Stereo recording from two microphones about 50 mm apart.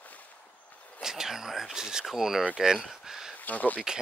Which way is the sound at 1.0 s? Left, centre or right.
Centre.